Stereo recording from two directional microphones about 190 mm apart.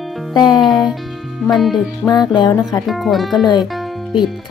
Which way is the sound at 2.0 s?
20° left (ahead or behind).